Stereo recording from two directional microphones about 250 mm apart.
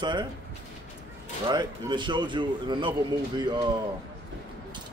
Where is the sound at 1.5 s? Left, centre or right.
Centre.